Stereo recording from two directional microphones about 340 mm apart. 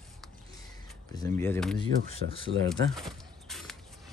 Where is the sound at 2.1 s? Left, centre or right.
Centre.